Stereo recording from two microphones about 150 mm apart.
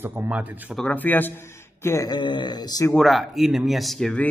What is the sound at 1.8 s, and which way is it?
A man's voice, 20° left (ahead or behind).